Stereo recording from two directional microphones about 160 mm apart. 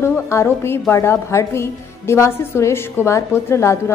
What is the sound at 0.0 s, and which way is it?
A woman's voice, 15° left (ahead or behind).